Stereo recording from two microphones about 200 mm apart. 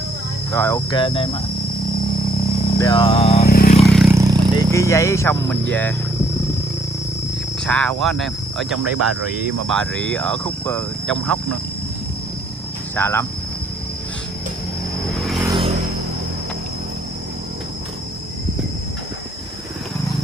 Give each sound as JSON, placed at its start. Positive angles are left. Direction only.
{"t": 0.5, "sound": "speech", "side_deg": 10}
{"t": 2.8, "sound": "speech", "side_deg": 20}
{"t": 3.4, "sound": "vehicle", "side_deg": 50}
{"t": 3.8, "sound": "a sound", "side_deg": 0}
{"t": 4.1, "sound": "a sound", "side_deg": -15}
{"t": 4.6, "sound": "speech", "side_deg": 15}
{"t": 7.6, "sound": "speech", "side_deg": 5}
{"t": 12.9, "sound": "speech", "side_deg": 10}
{"t": 15.1, "sound": "vehicle", "side_deg": 0}
{"t": 15.4, "sound": "vehicle", "side_deg": -25}